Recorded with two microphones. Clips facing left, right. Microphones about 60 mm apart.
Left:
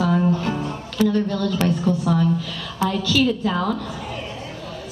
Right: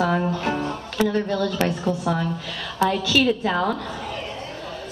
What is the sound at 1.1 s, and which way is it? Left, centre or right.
A woman's voice, right.